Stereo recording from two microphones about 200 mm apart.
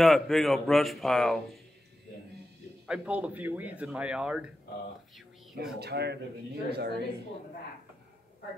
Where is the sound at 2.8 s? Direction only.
5° right (ahead or behind).